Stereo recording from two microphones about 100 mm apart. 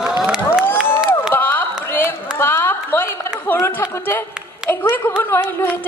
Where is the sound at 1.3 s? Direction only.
20° left (ahead or behind).